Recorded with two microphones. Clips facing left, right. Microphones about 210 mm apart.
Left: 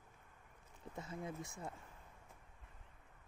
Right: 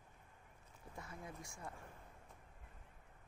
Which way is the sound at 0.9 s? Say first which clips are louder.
Left 6 dB; 25° left (ahead or behind).